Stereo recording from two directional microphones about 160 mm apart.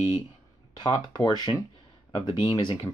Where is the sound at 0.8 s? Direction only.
25° left (ahead or behind).